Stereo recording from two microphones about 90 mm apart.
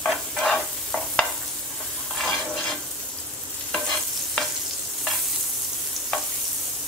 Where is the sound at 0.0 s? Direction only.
5° left (ahead or behind).